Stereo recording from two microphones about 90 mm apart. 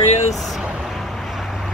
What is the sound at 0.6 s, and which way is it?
Vehicle, 5° right (ahead or behind).